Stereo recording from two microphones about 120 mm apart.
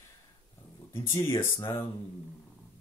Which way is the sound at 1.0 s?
25° left (ahead or behind).